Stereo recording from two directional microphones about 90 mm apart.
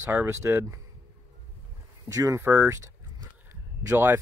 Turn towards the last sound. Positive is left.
turn(degrees=-30)  # may be behind; listen again after turning